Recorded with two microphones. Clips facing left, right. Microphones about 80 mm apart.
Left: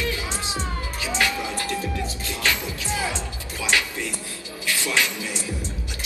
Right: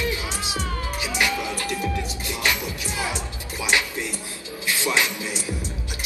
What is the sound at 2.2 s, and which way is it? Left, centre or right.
Music, centre.